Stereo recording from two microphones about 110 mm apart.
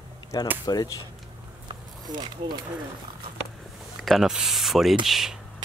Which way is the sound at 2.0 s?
40° right (ahead or behind).